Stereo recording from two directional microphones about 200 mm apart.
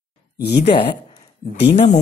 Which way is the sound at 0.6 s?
25° left (ahead or behind).